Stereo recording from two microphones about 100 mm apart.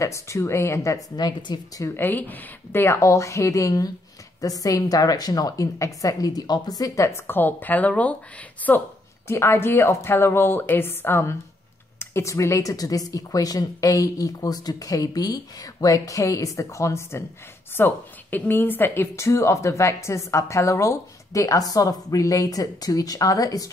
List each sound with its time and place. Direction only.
0.0 s speech: 30° left (ahead or behind)
1.1 s speech: 45° left (ahead or behind)
2.0 s a woman's voice: 20° left (ahead or behind); by 23.7 s 35° left (ahead or behind)